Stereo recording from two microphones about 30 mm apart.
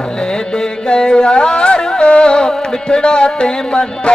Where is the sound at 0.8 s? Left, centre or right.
Left.